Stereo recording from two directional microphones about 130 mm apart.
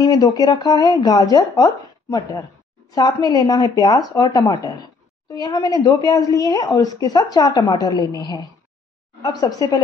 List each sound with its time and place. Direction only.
0.0 s a woman's voice: 30° left (ahead or behind)